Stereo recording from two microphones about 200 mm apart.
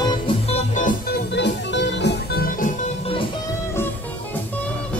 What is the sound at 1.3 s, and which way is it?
Music, 60° left (ahead or behind).